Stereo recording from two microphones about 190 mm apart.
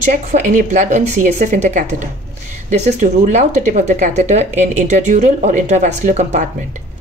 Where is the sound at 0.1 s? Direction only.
40° right (ahead or behind).